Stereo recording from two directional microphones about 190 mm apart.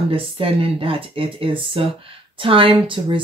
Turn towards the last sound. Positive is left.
turn(degrees=-25)  # may be behind; listen again after turning